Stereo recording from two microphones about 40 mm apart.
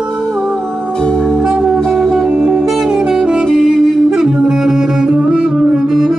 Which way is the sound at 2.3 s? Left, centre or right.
Centre.